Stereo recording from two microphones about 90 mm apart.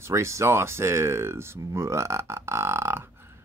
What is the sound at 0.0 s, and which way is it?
Speech, 30° right (ahead or behind).